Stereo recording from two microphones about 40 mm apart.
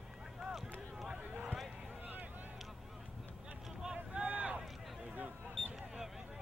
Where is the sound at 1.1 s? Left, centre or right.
Right.